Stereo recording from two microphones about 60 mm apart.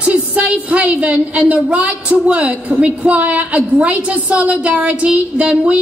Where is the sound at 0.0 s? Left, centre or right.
Right.